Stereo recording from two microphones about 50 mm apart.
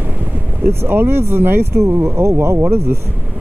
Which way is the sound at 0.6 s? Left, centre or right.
Right.